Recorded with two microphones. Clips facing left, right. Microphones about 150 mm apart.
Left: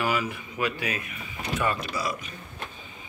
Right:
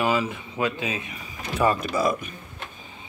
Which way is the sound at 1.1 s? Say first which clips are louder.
Left 1 dB; 35° right (ahead or behind).